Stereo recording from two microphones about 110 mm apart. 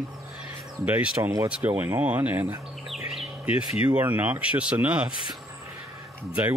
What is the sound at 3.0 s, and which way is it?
Bird, 5° right (ahead or behind).